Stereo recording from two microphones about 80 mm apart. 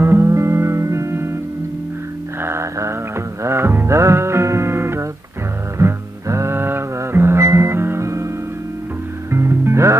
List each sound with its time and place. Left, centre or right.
0.0 s music: right
2.4 s music: right
9.3 s music: right